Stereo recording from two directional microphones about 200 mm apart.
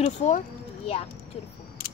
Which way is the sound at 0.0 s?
35° left (ahead or behind).